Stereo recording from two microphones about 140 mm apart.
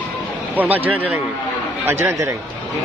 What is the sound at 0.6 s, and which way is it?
Speech, 10° right (ahead or behind).